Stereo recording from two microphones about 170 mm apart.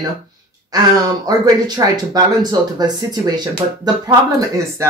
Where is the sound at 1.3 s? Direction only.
25° right (ahead or behind).